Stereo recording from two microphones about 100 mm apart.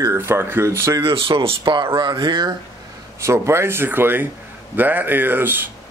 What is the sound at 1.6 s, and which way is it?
Speech, 50° right (ahead or behind).